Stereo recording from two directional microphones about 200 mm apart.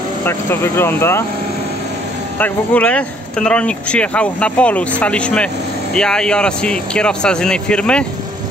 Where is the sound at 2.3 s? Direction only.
10° left (ahead or behind).